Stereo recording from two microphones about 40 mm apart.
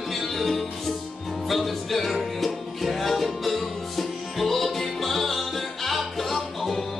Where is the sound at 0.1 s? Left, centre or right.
Centre.